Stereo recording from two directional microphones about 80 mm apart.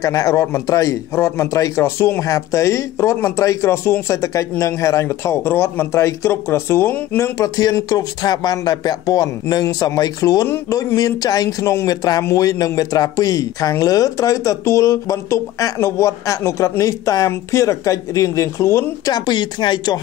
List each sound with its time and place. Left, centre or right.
0.0 s a man's voice: left
19.1 s speech: left